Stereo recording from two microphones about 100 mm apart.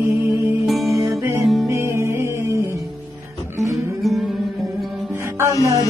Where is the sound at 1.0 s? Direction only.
30° right (ahead or behind).